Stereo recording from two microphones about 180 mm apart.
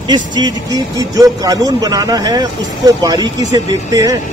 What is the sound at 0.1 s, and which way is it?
A man's voice, 25° right (ahead or behind).